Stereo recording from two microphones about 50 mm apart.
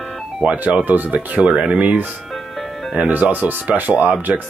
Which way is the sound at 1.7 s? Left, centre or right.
Right.